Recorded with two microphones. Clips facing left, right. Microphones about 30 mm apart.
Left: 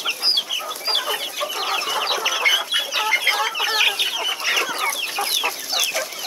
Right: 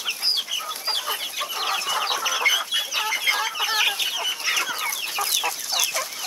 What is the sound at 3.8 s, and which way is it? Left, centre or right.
Chicken, left.